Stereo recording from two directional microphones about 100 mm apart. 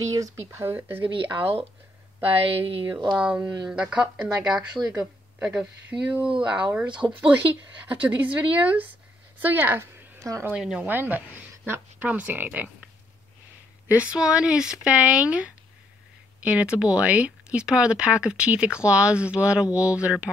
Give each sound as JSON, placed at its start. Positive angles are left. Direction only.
{"t": 0.0, "sound": "speech", "side_deg": -35}
{"t": 2.2, "sound": "speech", "side_deg": -65}
{"t": 3.2, "sound": "a woman's voice", "side_deg": -10}
{"t": 10.5, "sound": "speech", "side_deg": -10}
{"t": 13.8, "sound": "speech", "side_deg": -10}